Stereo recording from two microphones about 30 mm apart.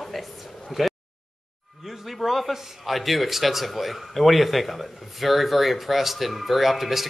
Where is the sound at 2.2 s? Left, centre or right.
Centre.